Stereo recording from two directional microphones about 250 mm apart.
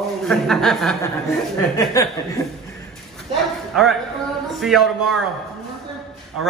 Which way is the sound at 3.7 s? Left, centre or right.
Centre.